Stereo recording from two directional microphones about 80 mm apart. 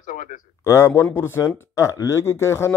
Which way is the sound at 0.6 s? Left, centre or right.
Left.